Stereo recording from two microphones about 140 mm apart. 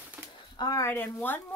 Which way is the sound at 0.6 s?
25° left (ahead or behind).